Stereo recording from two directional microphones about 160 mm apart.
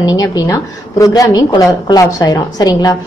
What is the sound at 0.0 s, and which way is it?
A woman's voice, 25° left (ahead or behind).